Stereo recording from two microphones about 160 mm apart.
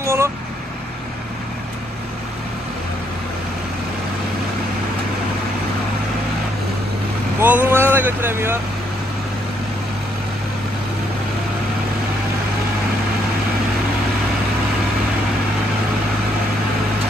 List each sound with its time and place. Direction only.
0.0 s vehicle: 15° right (ahead or behind)
7.3 s speech: 10° right (ahead or behind)